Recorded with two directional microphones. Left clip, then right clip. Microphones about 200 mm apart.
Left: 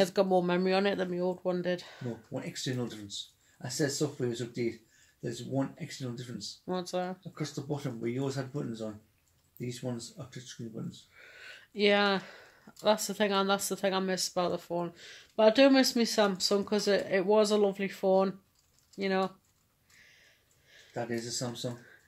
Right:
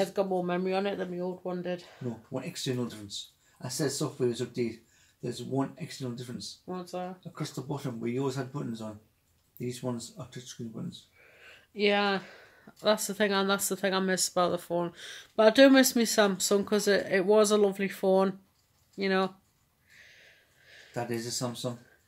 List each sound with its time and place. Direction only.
0.0 s speech: 45° left (ahead or behind)
2.5 s speech: 10° right (ahead or behind)
6.6 s speech: 50° left (ahead or behind)
7.3 s speech: 5° right (ahead or behind)
11.1 s a sound: 50° left (ahead or behind)
11.7 s speech: 25° left (ahead or behind)
12.8 s speech: centre (ahead or behind)
20.6 s a sound: centre (ahead or behind)